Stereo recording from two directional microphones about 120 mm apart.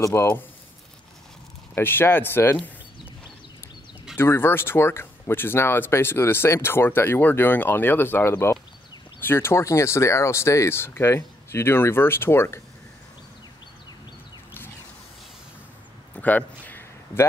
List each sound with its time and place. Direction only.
0.0 s speech: 20° left (ahead or behind)
1.8 s speech: 20° left (ahead or behind)
4.2 s speech: 20° left (ahead or behind)
16.2 s a sound: 15° left (ahead or behind)